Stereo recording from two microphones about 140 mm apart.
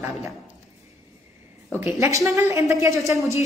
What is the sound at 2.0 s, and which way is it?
Speech, 20° right (ahead or behind).